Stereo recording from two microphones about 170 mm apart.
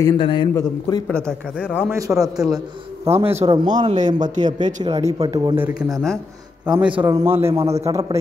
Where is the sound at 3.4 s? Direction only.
25° right (ahead or behind).